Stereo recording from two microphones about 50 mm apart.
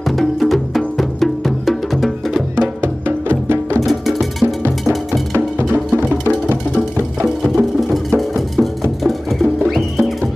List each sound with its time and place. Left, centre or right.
0.1 s music: centre
2.8 s music: right
3.8 s music: centre
4.8 s cowbell: centre
7.2 s music: centre
7.9 s music: centre